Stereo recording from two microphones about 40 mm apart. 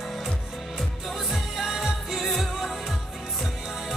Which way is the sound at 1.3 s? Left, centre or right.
Centre.